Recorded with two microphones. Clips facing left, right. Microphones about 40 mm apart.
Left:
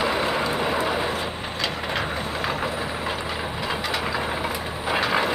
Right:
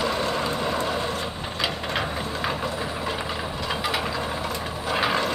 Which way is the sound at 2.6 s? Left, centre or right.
Centre.